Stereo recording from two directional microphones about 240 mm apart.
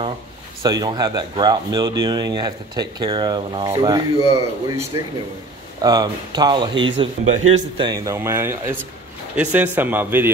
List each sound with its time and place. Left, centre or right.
0.6 s speech: centre
5.8 s speech: centre